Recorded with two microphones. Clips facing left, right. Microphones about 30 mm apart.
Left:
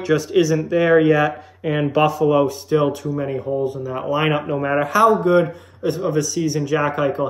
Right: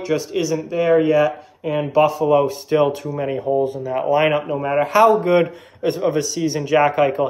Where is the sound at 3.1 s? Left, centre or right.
Right.